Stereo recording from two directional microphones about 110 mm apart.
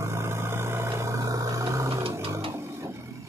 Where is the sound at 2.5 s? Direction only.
25° right (ahead or behind).